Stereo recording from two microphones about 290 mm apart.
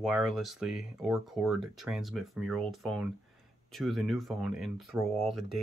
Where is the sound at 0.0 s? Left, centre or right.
Centre.